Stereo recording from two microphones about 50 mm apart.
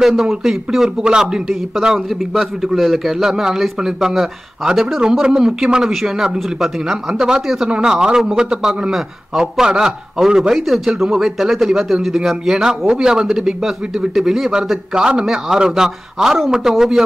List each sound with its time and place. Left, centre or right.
0.0 s a man's voice: centre
2.0 s a man's voice: centre